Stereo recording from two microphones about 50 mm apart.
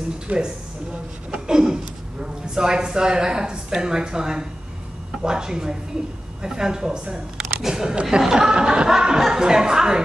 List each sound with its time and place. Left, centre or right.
0.3 s speech: right
1.3 s a sound: centre
2.5 s a woman's voice: centre